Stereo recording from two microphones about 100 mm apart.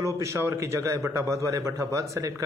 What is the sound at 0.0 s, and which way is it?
A man's voice, 30° right (ahead or behind).